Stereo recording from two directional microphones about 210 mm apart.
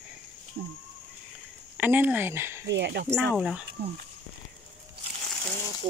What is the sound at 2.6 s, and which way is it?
Speech, 55° right (ahead or behind).